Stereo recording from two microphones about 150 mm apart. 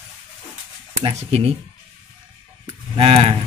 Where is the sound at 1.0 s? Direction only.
40° right (ahead or behind).